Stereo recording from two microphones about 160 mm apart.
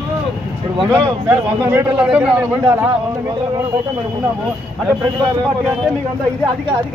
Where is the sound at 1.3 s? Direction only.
15° right (ahead or behind).